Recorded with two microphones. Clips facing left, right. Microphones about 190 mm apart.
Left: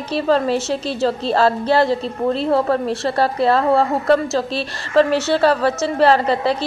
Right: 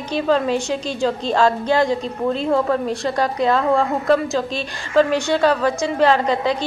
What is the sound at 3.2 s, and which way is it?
A woman's voice, 35° left (ahead or behind).